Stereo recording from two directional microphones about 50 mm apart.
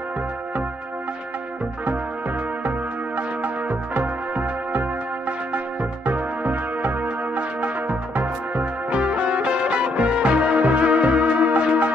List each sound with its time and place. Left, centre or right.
3.2 s music: right
6.0 s music: right